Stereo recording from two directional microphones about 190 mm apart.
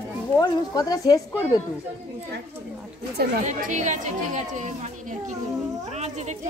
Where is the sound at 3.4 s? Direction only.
40° right (ahead or behind).